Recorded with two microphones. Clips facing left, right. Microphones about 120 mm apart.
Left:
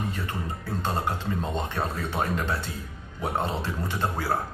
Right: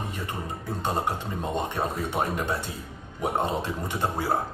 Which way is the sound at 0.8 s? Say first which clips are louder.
Right 1 dB; 15° right (ahead or behind).